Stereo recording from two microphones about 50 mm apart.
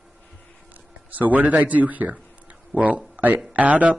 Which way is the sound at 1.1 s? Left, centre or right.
Right.